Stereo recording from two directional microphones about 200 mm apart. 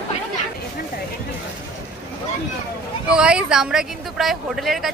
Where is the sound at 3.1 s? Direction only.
5° right (ahead or behind).